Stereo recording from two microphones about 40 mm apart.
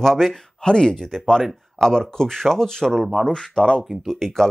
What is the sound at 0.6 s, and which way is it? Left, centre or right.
Speech, centre.